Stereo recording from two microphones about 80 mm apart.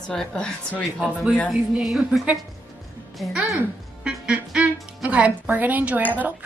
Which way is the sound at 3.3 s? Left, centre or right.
Centre.